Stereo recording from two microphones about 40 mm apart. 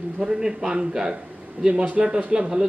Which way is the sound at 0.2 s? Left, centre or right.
Centre.